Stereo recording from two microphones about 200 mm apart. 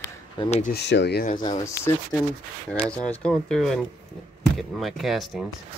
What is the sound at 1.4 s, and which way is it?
Speech, 20° left (ahead or behind).